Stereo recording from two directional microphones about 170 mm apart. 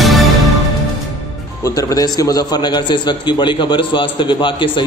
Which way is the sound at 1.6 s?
20° left (ahead or behind).